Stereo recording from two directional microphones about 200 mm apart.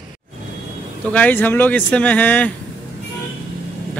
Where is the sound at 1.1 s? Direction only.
10° left (ahead or behind).